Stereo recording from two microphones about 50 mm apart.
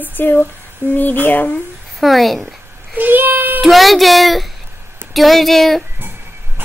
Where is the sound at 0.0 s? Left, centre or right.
Left.